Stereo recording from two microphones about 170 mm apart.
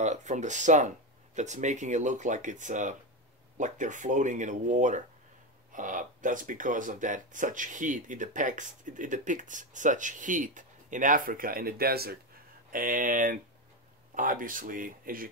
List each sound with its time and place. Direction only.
0.0 s speech: 45° right (ahead or behind); by 12.2 s 65° right (ahead or behind)
12.7 s speech: 50° right (ahead or behind)